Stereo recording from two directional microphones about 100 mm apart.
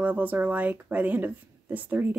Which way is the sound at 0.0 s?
15° right (ahead or behind).